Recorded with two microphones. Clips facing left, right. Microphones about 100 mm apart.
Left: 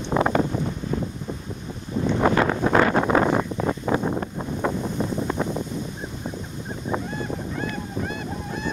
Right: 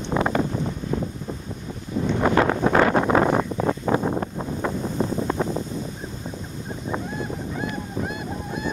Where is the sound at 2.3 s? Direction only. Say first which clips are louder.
Right 1 dB; 30° right (ahead or behind).